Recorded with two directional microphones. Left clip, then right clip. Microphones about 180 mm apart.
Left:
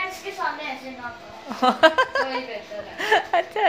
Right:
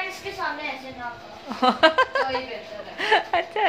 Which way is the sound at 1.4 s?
Centre (ahead or behind).